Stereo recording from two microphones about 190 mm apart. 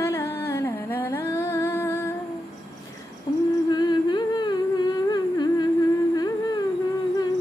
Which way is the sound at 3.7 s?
20° left (ahead or behind).